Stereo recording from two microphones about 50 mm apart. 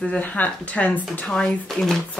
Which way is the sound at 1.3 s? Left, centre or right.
Centre.